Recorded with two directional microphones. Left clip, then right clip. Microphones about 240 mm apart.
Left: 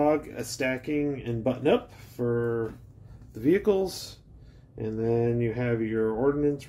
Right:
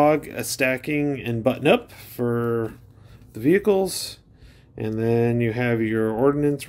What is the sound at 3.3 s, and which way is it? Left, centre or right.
Speech, right.